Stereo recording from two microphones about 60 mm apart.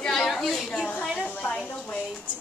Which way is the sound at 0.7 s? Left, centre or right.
Left.